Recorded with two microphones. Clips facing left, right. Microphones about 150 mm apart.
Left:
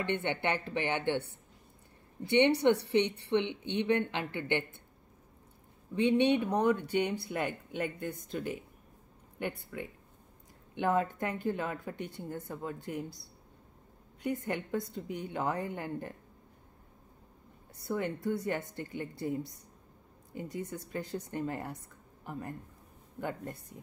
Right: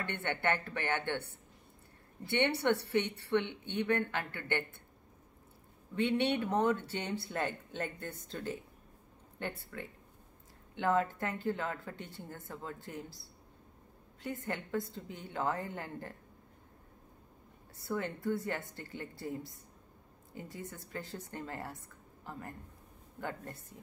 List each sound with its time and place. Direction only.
0.2 s speech: 20° left (ahead or behind)
2.2 s speech: 20° left (ahead or behind)
3.4 s speech: 45° right (ahead or behind)
3.8 s speech: 20° left (ahead or behind)
5.9 s speech: 15° left (ahead or behind)
14.2 s speech: 20° left (ahead or behind)
17.7 s speech: 20° left (ahead or behind)